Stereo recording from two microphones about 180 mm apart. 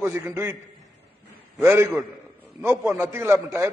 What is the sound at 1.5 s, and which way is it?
A man's voice, 15° right (ahead or behind).